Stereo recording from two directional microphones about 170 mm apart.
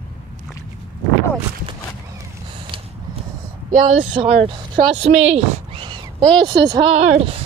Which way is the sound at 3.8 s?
35° right (ahead or behind).